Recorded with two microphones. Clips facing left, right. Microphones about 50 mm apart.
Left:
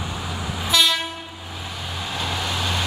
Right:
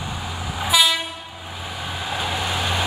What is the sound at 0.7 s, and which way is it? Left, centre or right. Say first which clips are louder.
Train: right 1 dB; centre.